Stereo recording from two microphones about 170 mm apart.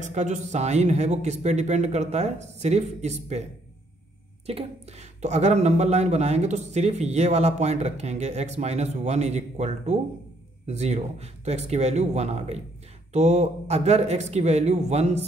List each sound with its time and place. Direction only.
0.0 s speech: 45° right (ahead or behind)
4.5 s speech: 35° right (ahead or behind)